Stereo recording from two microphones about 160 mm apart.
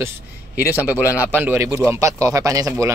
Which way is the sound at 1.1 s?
10° right (ahead or behind).